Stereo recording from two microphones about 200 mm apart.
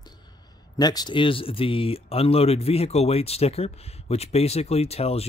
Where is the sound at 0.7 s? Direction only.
20° left (ahead or behind).